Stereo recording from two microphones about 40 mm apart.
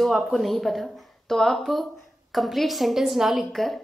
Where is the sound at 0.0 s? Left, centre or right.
Centre.